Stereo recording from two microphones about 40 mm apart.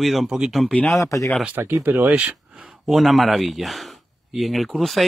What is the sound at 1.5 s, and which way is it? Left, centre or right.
Speech, right.